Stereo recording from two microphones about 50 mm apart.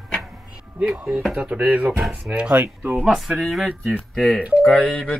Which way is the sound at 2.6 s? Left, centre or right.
Right.